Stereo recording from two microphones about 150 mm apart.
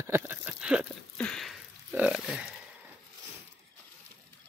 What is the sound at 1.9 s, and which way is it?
Speech, 5° right (ahead or behind).